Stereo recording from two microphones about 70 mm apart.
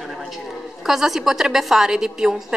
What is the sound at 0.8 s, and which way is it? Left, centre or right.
A woman's voice, centre.